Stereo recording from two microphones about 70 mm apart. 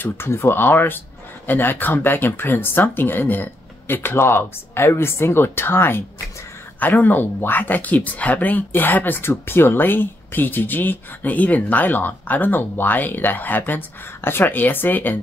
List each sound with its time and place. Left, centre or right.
0.0 s speech: left